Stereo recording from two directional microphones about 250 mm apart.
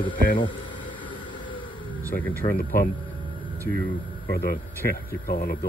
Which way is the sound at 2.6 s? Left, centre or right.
Left.